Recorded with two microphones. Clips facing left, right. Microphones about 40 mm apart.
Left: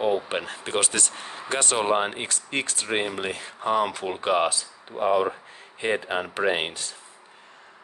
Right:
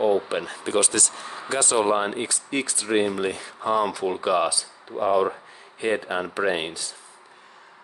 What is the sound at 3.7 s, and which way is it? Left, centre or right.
Speech, left.